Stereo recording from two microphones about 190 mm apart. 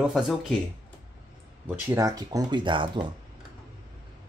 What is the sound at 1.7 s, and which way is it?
Speech, 10° right (ahead or behind).